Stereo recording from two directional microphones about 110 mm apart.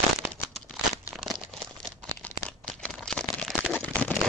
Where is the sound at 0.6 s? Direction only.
Centre (ahead or behind).